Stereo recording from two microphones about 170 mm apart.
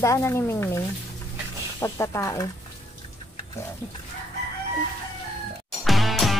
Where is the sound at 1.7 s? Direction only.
15° left (ahead or behind).